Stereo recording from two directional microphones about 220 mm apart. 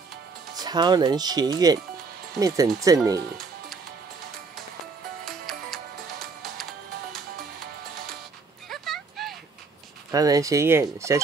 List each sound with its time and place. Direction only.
0.6 s speech: 20° right (ahead or behind)
5.2 s music: centre (ahead or behind)
8.6 s a sound: centre (ahead or behind)
10.1 s speech: 15° right (ahead or behind)